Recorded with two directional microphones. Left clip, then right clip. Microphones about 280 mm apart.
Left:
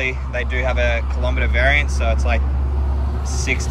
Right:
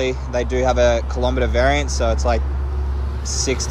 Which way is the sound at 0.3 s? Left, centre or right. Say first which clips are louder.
Right 4 dB; right.